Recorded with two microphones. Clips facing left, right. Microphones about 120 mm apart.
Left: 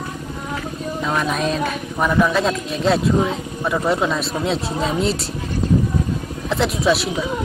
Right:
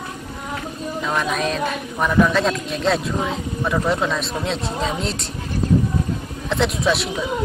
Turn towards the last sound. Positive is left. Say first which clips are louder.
# left 2 dB
turn(degrees=0)  # may be behind; listen again after turning